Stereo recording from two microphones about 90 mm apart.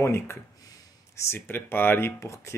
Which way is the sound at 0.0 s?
30° left (ahead or behind).